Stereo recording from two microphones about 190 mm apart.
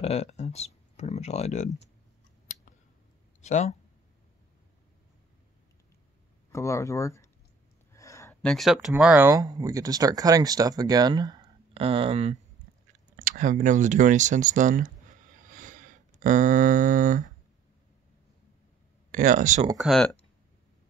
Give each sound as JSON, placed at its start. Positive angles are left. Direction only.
{"t": 0.0, "sound": "speech", "side_deg": 35}
{"t": 3.3, "sound": "speech", "side_deg": 40}
{"t": 6.5, "sound": "speech", "side_deg": 15}
{"t": 7.9, "sound": "a sound", "side_deg": 15}
{"t": 8.4, "sound": "speech", "side_deg": 5}
{"t": 9.3, "sound": "speech", "side_deg": -20}
{"t": 13.1, "sound": "speech", "side_deg": -45}
{"t": 19.1, "sound": "speech", "side_deg": -45}
{"t": 19.8, "sound": "speech", "side_deg": 0}